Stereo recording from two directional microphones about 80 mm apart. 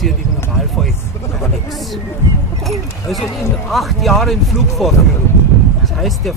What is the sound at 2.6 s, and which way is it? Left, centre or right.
Speech, centre.